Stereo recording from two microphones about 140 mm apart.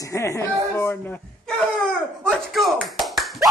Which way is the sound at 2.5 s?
Centre (ahead or behind).